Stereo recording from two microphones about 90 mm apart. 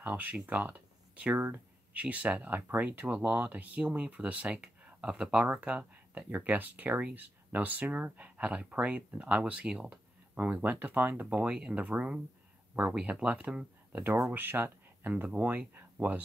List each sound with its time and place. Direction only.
0.0 s speech: 20° right (ahead or behind)
14.3 s speech: 25° right (ahead or behind)